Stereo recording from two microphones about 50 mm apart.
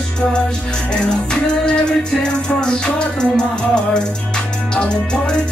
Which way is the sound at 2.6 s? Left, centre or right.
Centre.